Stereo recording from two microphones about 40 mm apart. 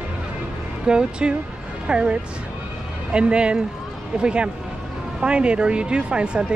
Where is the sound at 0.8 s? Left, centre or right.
Right.